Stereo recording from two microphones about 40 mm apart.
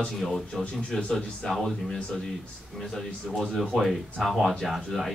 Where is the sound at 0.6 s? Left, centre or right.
Left.